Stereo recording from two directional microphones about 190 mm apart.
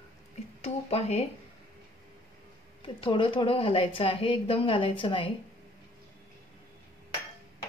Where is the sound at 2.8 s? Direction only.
25° left (ahead or behind).